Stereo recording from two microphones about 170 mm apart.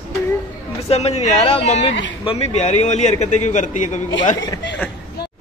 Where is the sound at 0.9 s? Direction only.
40° left (ahead or behind).